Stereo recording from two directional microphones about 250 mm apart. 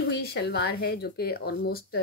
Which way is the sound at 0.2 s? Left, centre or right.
Left.